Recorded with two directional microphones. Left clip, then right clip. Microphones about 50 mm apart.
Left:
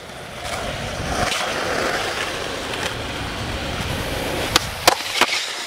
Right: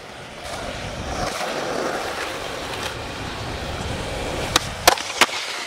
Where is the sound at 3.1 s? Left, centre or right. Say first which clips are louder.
Left 3 dB; left.